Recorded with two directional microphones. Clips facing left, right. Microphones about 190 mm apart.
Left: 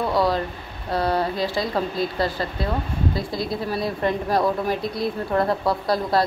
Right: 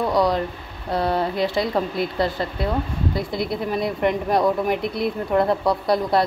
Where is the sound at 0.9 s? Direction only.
20° right (ahead or behind).